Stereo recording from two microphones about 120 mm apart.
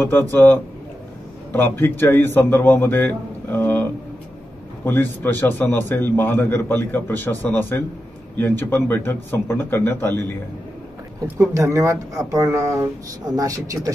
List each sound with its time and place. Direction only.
0.0 s a man's voice: 15° left (ahead or behind)
11.2 s speech: 20° right (ahead or behind)